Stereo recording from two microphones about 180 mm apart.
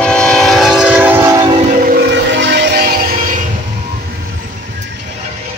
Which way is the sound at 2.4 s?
65° right (ahead or behind).